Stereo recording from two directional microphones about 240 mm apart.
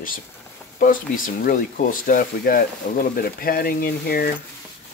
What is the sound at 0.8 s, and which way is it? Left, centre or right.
Speech, left.